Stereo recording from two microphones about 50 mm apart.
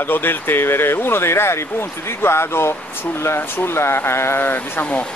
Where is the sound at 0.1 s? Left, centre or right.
Left.